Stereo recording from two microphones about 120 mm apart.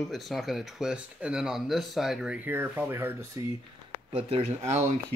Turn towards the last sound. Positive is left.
turn(degrees=-65)  # may be behind; listen again after turning